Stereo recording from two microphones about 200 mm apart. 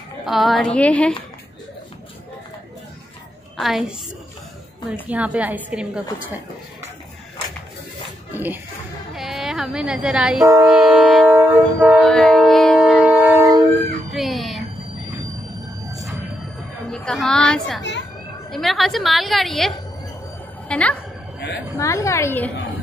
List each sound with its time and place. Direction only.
0.2 s a woman's voice: centre (ahead or behind)
3.5 s a woman's voice: centre (ahead or behind)
5.0 s a woman's voice: 5° right (ahead or behind)
9.1 s a sound: centre (ahead or behind)
10.6 s train: centre (ahead or behind)
12.0 s wind instrument: centre (ahead or behind); by 13.7 s 15° right (ahead or behind)
14.1 s music: centre (ahead or behind)
16.9 s a woman's voice: 5° left (ahead or behind)